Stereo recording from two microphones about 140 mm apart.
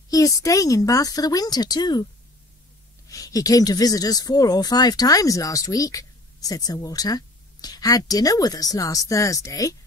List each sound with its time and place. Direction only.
0.1 s speech: 25° left (ahead or behind)
3.1 s speech: 25° left (ahead or behind)